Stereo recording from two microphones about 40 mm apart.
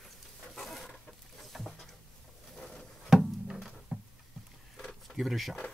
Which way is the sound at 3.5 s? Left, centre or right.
Centre.